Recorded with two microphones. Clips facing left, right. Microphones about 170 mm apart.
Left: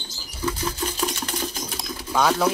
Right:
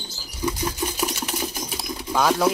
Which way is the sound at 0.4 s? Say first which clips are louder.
Right 1 dB; 10° right (ahead or behind).